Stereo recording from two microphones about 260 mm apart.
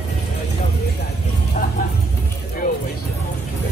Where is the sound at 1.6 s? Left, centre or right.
Left.